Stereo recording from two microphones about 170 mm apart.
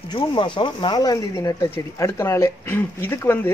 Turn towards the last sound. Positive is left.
turn(degrees=15)  # may be behind; listen again after turning